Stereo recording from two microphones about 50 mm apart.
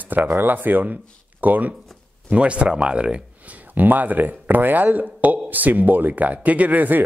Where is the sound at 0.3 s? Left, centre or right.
Right.